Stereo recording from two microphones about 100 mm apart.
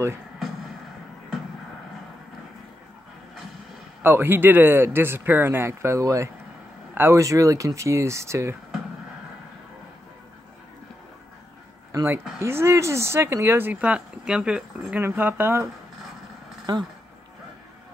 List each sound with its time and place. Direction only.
4.0 s speech: 20° right (ahead or behind)
11.9 s a sound: 30° right (ahead or behind)
12.4 s speech: 25° right (ahead or behind); by 15.0 s 10° right (ahead or behind)
15.0 s speech: 20° right (ahead or behind)